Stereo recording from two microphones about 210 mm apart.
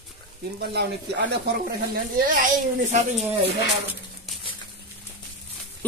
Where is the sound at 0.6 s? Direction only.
50° right (ahead or behind).